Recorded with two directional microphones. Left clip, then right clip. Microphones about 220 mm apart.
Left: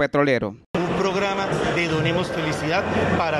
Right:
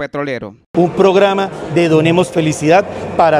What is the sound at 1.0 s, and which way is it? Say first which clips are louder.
A man's voice: right 13 dB; 60° right (ahead or behind).